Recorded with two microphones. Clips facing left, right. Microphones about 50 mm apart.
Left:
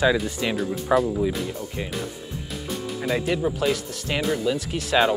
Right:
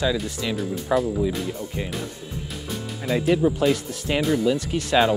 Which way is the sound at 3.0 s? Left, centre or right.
Centre.